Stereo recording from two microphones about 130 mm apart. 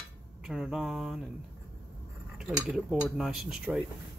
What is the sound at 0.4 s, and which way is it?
Mantra, 5° right (ahead or behind).